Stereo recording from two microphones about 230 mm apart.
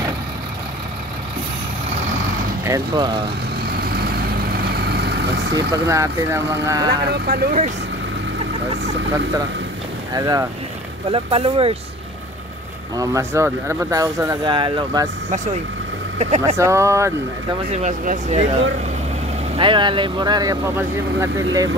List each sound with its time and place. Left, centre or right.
2.6 s speech: centre
3.6 s vehicle: right
5.7 s speech: centre
7.1 s speech: right
10.1 s speech: centre
12.9 s speech: centre
16.2 s speech: right
16.5 s speech: centre
17.7 s speech: right
19.5 s speech: right